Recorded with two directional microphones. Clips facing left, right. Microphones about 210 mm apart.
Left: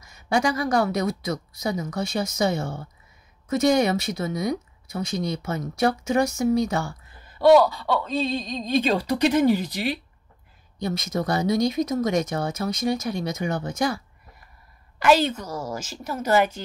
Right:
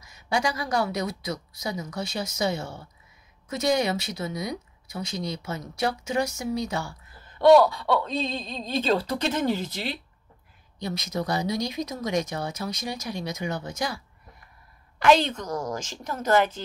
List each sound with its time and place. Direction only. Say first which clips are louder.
0.0 s a woman's voice: left 4 dB; 50° left (ahead or behind)
7.2 s speech: left 1 dB; 5° left (ahead or behind)
10.8 s a woman's voice: left 3 dB; 50° left (ahead or behind)
15.0 s speech: left 1 dB; 5° left (ahead or behind)